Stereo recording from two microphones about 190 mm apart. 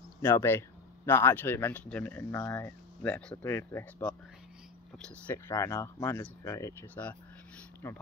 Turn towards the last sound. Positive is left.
turn(degrees=15)  # may be behind; listen again after turning